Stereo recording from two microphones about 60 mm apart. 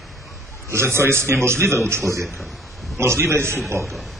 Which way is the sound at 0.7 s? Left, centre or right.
Right.